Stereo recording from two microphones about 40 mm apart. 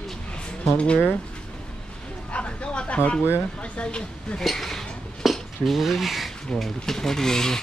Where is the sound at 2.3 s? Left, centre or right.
Left.